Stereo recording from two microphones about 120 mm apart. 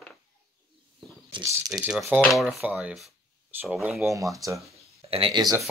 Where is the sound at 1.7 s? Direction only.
5° right (ahead or behind).